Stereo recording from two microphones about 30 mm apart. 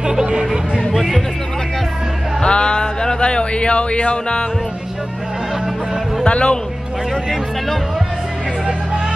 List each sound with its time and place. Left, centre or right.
0.0 s speech: right
2.4 s a sound: left
6.2 s speech: left